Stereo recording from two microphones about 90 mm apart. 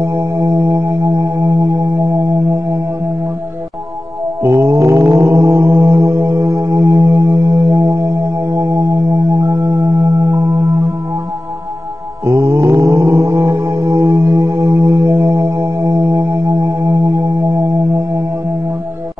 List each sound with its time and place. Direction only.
0.0 s music: 30° right (ahead or behind)
4.4 s mantra: 30° right (ahead or behind)
5.9 s music: 30° right (ahead or behind)
12.3 s mantra: 30° right (ahead or behind)
12.8 s a sound: 30° right (ahead or behind)
13.3 s music: 25° right (ahead or behind)